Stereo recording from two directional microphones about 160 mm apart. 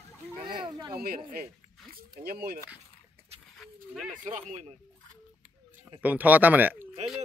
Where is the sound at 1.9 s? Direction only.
70° right (ahead or behind).